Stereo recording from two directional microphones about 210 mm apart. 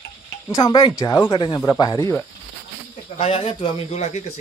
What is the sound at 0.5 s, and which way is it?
Speech, 20° left (ahead or behind).